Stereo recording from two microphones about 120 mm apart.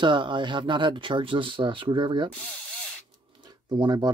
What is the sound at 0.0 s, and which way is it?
Speech, 40° right (ahead or behind).